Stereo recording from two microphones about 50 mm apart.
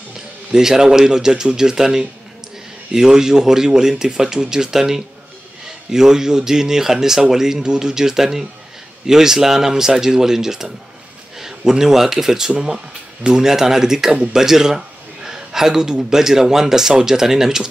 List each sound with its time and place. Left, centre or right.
0.5 s speech: centre
14.1 s speech: right
14.4 s speech: centre